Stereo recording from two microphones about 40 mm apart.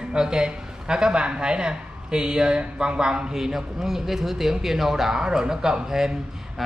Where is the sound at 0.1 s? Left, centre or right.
Right.